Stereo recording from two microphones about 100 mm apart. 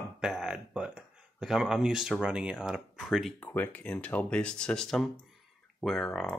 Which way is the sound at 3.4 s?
20° left (ahead or behind).